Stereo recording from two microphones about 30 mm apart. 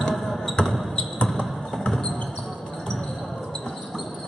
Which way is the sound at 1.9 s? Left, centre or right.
Left.